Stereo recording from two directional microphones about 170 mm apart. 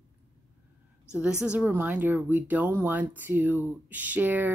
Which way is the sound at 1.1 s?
5° right (ahead or behind).